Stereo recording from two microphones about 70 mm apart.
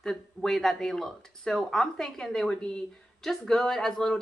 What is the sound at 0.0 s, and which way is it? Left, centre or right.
Speech, centre.